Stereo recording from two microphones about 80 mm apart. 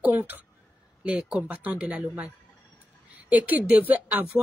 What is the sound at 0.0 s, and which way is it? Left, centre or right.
A woman's voice, right.